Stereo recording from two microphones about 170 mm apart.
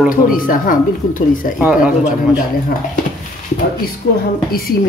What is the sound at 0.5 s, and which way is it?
Speech, 55° left (ahead or behind).